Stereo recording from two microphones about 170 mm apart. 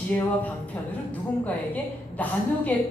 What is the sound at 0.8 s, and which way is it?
Speech, 10° left (ahead or behind).